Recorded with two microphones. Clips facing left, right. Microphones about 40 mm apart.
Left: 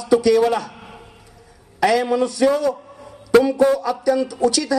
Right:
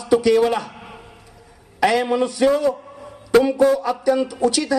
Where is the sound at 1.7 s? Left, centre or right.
Right.